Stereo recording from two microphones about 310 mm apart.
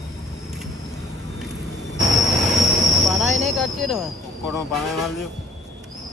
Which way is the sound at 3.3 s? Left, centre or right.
Right.